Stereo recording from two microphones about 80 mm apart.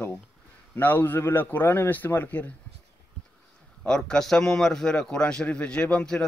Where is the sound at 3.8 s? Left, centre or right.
Centre.